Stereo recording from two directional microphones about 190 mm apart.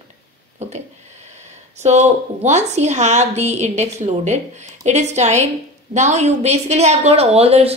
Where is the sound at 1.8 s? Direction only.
35° right (ahead or behind).